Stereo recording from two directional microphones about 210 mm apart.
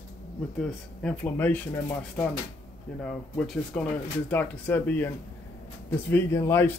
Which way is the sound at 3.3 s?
5° left (ahead or behind).